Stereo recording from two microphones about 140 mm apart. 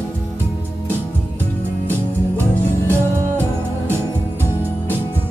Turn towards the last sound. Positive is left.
turn(degrees=-15)  # may be behind; listen again after turning